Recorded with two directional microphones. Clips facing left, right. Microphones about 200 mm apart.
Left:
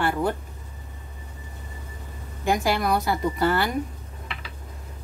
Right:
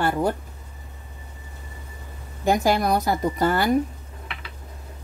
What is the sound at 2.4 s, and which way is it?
A woman's voice, 40° right (ahead or behind).